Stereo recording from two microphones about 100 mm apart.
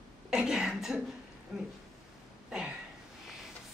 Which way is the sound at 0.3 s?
5° right (ahead or behind).